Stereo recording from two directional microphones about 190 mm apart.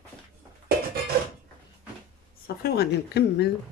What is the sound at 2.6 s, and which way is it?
Speech, 60° left (ahead or behind).